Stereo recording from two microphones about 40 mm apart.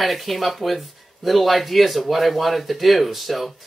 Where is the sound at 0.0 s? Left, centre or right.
Centre.